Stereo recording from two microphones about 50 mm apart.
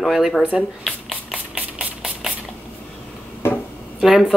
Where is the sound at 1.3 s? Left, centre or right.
Right.